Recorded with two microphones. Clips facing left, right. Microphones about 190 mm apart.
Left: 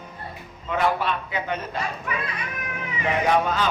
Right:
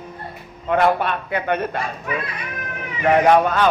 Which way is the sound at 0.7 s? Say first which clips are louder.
Right 5 dB; 55° right (ahead or behind).